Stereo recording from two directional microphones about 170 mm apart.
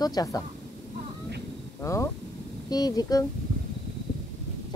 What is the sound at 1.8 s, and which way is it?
Speech, 15° left (ahead or behind).